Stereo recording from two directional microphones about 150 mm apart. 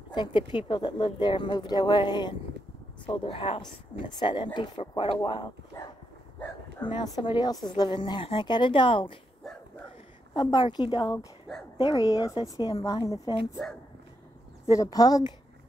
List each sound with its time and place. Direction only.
0.1 s a woman's voice: 30° left (ahead or behind)
10.3 s a woman's voice: 30° left (ahead or behind)
14.7 s a woman's voice: 25° left (ahead or behind)